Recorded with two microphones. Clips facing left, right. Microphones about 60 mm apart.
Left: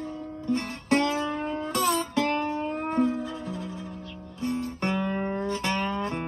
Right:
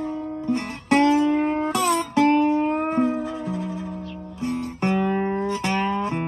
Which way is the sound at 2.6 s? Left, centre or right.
Right.